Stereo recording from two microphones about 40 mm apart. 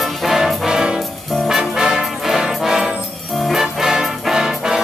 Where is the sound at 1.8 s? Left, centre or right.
Centre.